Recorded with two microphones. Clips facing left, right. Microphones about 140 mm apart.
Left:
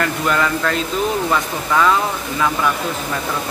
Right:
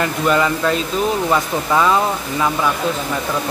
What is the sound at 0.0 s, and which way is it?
Speech, 15° right (ahead or behind).